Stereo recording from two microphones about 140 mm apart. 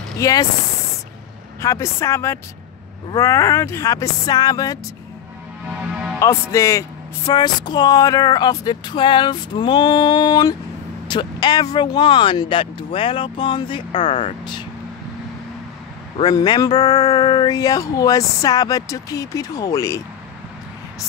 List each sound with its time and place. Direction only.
0.2 s speech: 25° left (ahead or behind)
1.6 s speech: 20° left (ahead or behind)
6.1 s speech: 20° left (ahead or behind); by 14.6 s 35° left (ahead or behind)
16.2 s speech: 30° left (ahead or behind)